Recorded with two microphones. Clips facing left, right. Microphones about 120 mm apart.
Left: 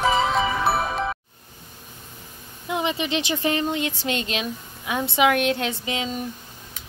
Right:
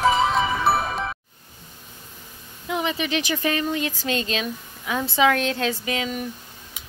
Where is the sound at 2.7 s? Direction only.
25° left (ahead or behind).